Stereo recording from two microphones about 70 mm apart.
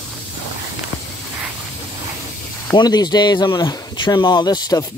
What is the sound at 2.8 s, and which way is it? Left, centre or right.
Speech, left.